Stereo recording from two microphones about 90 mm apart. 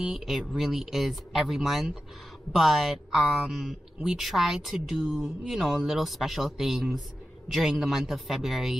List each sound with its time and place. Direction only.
0.0 s speech: 5° right (ahead or behind)